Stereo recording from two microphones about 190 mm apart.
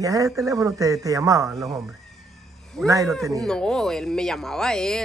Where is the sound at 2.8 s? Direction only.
15° right (ahead or behind).